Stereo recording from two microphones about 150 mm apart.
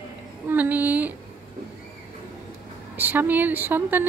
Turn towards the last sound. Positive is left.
turn(degrees=-10)  # may be behind; listen again after turning